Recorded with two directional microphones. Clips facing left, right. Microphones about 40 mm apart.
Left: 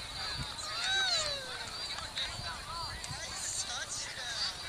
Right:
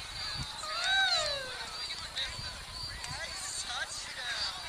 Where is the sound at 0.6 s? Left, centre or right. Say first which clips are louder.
Right 4 dB; centre.